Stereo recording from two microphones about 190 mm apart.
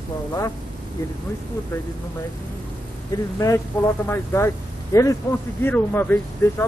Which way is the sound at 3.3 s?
15° left (ahead or behind).